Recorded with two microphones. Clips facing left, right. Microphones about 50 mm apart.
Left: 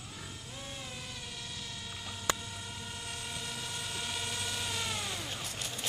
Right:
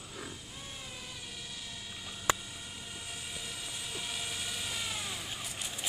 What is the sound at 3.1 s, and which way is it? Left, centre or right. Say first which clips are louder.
Vehicle: left 2 dB; centre.